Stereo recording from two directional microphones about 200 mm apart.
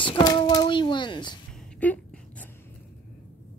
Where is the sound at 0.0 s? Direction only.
20° left (ahead or behind).